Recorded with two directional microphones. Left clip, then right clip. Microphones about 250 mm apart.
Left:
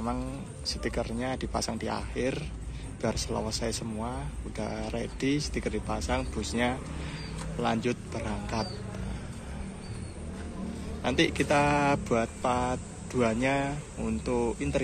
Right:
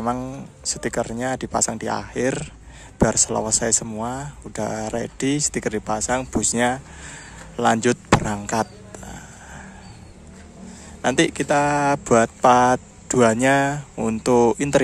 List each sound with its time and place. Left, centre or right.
0.0 s speech: right
11.0 s speech: right